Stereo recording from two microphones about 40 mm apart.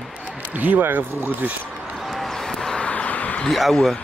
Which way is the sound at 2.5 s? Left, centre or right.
Centre.